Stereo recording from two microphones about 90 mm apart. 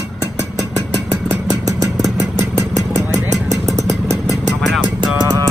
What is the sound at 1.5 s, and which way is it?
Vehicle, 45° right (ahead or behind).